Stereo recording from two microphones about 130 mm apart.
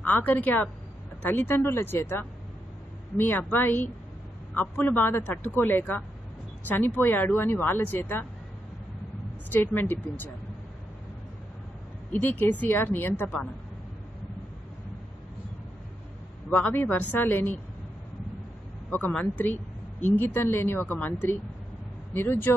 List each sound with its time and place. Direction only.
0.0 s speech: 15° left (ahead or behind)
9.5 s speech: 15° left (ahead or behind)
12.1 s speech: 15° left (ahead or behind)
16.4 s speech: 15° left (ahead or behind)
18.9 s speech: 15° left (ahead or behind)